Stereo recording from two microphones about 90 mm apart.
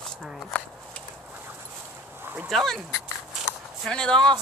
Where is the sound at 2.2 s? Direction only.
25° right (ahead or behind).